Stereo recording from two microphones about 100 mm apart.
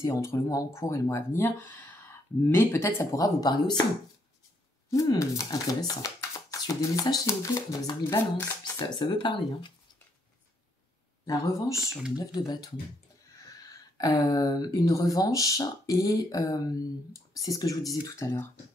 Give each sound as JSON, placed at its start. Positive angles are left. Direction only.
{"t": 0.0, "sound": "speech", "side_deg": 30}
{"t": 1.4, "sound": "speech", "side_deg": 20}
{"t": 4.9, "sound": "speech", "side_deg": 35}
{"t": 8.7, "sound": "speech", "side_deg": 50}
{"t": 11.2, "sound": "speech", "side_deg": 35}
{"t": 11.8, "sound": "speech", "side_deg": -5}
{"t": 12.4, "sound": "speech", "side_deg": 40}